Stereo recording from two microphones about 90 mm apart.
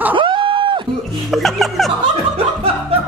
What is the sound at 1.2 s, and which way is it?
Speech, centre (ahead or behind).